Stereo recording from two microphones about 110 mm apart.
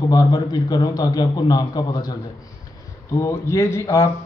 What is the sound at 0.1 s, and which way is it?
A man's voice, 35° left (ahead or behind).